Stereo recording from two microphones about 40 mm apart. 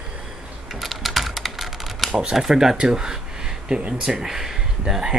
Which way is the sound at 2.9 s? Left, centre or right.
Centre.